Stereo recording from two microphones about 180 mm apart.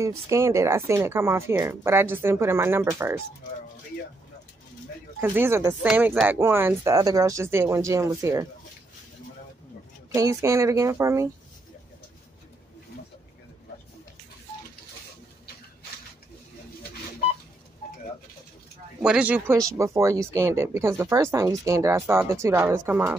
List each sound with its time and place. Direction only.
0.0 s speech: 15° right (ahead or behind)
5.2 s speech: 15° right (ahead or behind)
10.1 s speech: 15° right (ahead or behind)
18.9 s speech: 5° right (ahead or behind)